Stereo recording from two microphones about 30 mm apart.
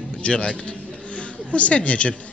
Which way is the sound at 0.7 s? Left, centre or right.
Left.